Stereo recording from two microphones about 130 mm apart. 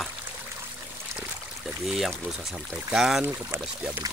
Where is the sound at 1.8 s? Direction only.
Centre (ahead or behind).